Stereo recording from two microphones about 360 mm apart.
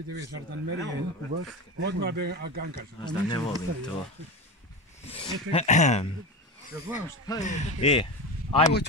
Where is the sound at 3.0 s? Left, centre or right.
Centre.